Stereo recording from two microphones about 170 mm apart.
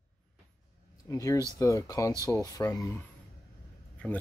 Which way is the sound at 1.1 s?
20° left (ahead or behind).